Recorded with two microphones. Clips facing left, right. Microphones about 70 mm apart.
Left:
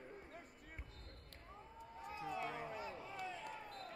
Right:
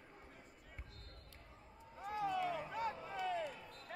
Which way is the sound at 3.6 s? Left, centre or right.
Left.